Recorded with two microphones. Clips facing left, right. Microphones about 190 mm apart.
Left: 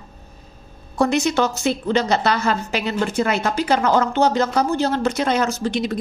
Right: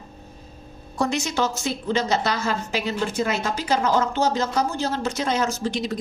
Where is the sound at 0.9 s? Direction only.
60° left (ahead or behind).